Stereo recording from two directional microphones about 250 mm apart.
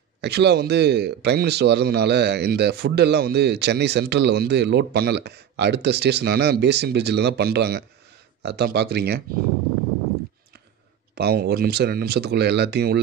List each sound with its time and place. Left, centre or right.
0.2 s a man's voice: right
11.1 s a man's voice: right